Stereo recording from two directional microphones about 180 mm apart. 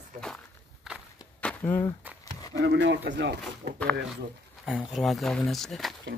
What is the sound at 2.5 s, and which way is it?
Speech, 75° right (ahead or behind).